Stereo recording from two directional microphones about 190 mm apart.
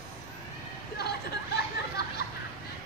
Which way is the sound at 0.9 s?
60° left (ahead or behind).